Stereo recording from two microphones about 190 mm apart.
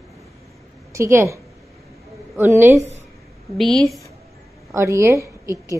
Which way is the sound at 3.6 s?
Centre (ahead or behind).